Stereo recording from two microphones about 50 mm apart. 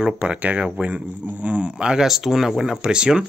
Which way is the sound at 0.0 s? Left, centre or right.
Right.